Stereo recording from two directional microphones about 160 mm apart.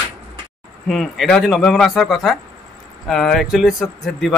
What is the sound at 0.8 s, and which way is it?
A man's voice, 5° left (ahead or behind).